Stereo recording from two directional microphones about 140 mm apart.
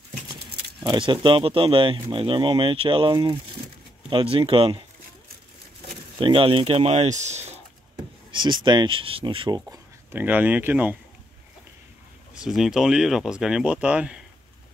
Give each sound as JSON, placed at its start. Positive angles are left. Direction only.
{"t": 0.8, "sound": "speech", "side_deg": -35}
{"t": 6.1, "sound": "speech", "side_deg": -40}
{"t": 8.3, "sound": "speech", "side_deg": -35}
{"t": 10.1, "sound": "speech", "side_deg": -10}
{"t": 12.4, "sound": "speech", "side_deg": 0}